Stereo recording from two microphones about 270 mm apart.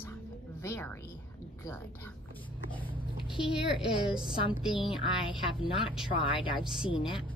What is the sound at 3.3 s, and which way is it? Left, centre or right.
Speech, centre.